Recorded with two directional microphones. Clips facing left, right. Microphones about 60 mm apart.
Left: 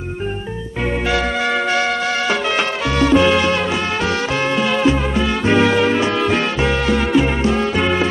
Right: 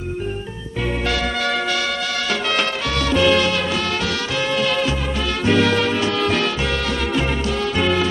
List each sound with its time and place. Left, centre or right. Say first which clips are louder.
1.1 s music: left 5 dB; left
4.4 s music: even; left
4.6 s music: left 4 dB; left